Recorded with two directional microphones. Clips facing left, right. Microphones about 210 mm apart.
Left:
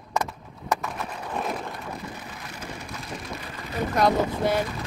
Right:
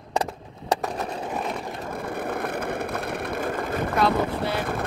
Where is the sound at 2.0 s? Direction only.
55° right (ahead or behind).